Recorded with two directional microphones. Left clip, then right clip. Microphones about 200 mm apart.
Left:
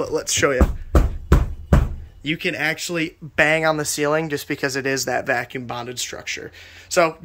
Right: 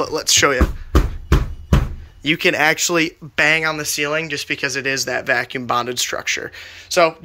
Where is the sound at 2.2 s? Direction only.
10° left (ahead or behind).